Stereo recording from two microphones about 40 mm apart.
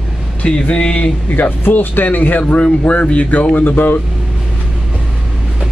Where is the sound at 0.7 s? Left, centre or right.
Left.